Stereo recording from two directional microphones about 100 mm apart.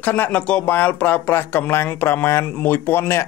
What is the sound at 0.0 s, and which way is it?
Speech, 15° left (ahead or behind).